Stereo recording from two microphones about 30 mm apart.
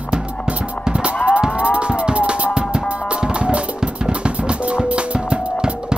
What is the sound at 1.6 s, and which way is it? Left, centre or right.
Music, right.